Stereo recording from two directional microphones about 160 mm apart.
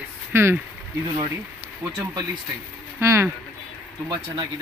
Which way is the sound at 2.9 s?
15° right (ahead or behind).